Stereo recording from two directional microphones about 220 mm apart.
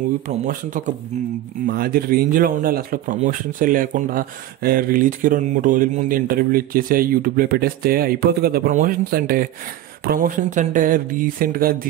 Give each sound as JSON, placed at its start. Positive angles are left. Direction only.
{"t": 0.3, "sound": "speech", "side_deg": -35}